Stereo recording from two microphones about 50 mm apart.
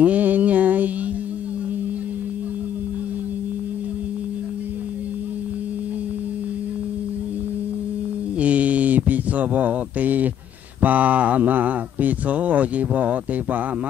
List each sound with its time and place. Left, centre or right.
0.0 s mantra: right
8.4 s mantra: right
10.8 s speech: right